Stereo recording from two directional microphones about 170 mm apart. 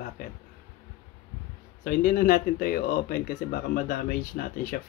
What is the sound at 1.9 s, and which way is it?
Speech, 60° left (ahead or behind).